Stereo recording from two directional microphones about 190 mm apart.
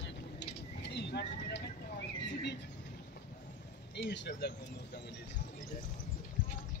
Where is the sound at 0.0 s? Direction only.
65° left (ahead or behind).